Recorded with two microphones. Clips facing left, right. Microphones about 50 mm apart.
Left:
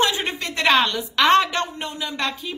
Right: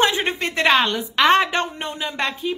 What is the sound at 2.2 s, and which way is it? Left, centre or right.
Speech, right.